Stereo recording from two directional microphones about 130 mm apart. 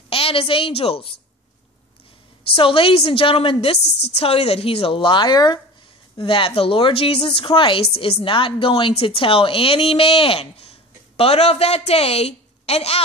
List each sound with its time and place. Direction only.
0.1 s a woman's voice: 45° left (ahead or behind)
2.5 s a woman's voice: 45° left (ahead or behind)